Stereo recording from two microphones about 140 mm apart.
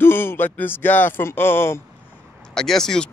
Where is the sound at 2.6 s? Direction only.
5° left (ahead or behind).